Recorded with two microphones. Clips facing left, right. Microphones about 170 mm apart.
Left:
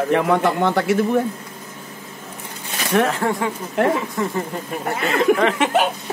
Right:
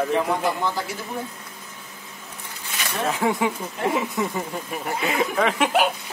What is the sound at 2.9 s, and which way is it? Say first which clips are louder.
Speech: left 9 dB; 75° left (ahead or behind).